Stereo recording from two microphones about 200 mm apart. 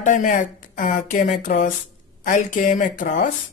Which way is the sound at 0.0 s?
40° left (ahead or behind).